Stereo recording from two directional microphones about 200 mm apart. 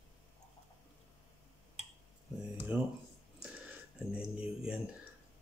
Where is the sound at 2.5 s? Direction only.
10° right (ahead or behind).